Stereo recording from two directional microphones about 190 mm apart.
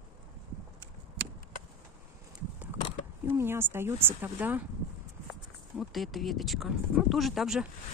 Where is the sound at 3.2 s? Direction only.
10° right (ahead or behind).